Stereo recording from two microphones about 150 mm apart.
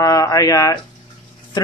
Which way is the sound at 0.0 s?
25° left (ahead or behind).